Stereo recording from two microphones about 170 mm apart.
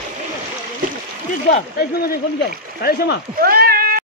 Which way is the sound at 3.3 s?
60° right (ahead or behind).